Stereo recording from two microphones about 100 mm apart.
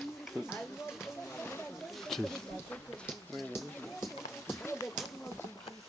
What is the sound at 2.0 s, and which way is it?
Speech, 5° left (ahead or behind).